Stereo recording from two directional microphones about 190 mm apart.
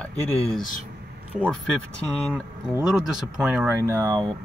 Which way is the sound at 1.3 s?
Centre (ahead or behind).